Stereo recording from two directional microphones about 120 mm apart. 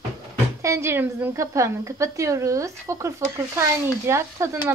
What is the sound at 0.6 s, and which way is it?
Speech, 25° right (ahead or behind).